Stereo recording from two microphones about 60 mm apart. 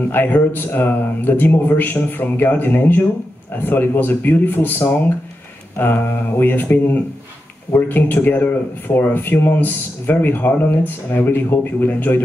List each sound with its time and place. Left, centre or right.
0.1 s speech: left